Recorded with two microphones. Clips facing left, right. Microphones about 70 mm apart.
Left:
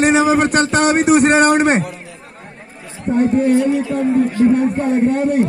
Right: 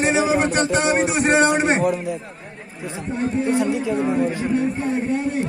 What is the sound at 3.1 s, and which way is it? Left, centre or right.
A man's voice, left.